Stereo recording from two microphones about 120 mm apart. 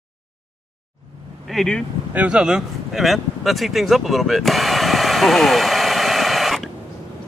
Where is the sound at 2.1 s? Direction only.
10° right (ahead or behind).